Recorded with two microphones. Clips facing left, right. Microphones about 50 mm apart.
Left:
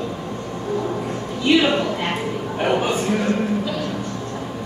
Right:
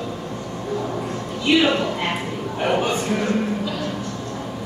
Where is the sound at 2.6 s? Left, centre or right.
Centre.